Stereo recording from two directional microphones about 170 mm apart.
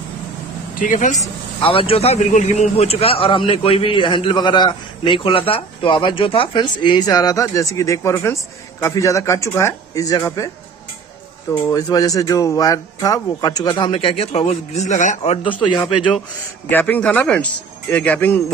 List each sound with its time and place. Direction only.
0.7 s speech: 50° left (ahead or behind)
1.6 s a man's voice: 30° left (ahead or behind)
11.7 s a man's voice: 20° left (ahead or behind); by 15.3 s 45° left (ahead or behind)
15.4 s a man's voice: 25° left (ahead or behind)
16.7 s a man's voice: 10° left (ahead or behind)